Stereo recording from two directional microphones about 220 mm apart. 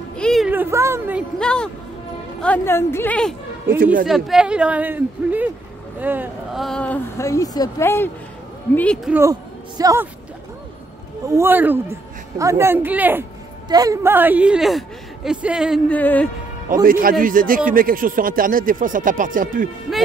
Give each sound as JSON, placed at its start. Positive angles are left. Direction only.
{"t": 0.1, "sound": "speech", "side_deg": 0}
{"t": 1.4, "sound": "speech", "side_deg": 5}
{"t": 9.1, "sound": "a man's voice", "side_deg": -15}
{"t": 11.2, "sound": "speech", "side_deg": -10}
{"t": 16.8, "sound": "speech", "side_deg": -40}